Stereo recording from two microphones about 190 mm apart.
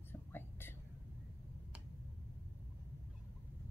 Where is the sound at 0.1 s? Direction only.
10° left (ahead or behind).